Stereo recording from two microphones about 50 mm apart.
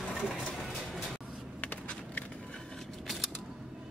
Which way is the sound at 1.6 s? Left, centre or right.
Left.